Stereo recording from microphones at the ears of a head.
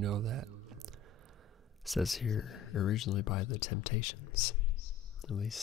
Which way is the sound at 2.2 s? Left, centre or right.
Left.